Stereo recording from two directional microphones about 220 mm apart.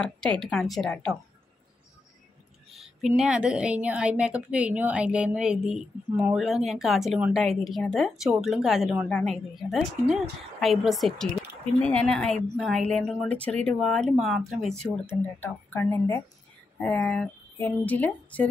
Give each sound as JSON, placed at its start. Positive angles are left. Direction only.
{"t": 0.0, "sound": "a woman's voice", "side_deg": 5}
{"t": 2.7, "sound": "a sound", "side_deg": 0}
{"t": 3.2, "sound": "a woman's voice", "side_deg": -5}